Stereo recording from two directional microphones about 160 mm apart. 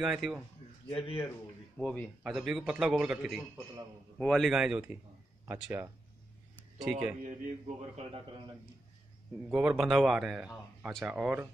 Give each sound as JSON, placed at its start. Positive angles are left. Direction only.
{"t": 0.0, "sound": "a man's voice", "side_deg": 0}
{"t": 0.8, "sound": "speech", "side_deg": 35}
{"t": 1.8, "sound": "a man's voice", "side_deg": 5}
{"t": 5.4, "sound": "speech", "side_deg": -15}
{"t": 6.9, "sound": "speech", "side_deg": -10}
{"t": 7.2, "sound": "a man's voice", "side_deg": -45}
{"t": 9.5, "sound": "a man's voice", "side_deg": -10}